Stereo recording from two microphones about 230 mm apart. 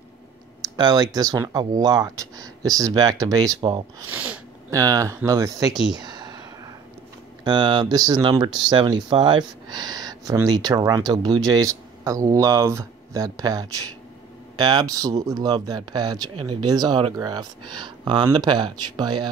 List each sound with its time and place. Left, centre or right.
0.6 s clicking: centre
1.1 s speech: centre
4.1 s speech: centre
5.9 s a sound: centre
7.4 s speech: centre